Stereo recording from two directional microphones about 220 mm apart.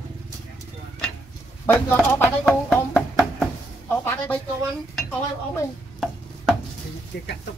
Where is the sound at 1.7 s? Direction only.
10° left (ahead or behind).